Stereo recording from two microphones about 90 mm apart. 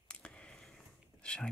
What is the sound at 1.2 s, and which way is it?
Speech, 10° left (ahead or behind).